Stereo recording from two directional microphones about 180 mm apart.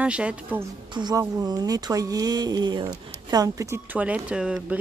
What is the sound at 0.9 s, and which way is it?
Speech, 25° right (ahead or behind).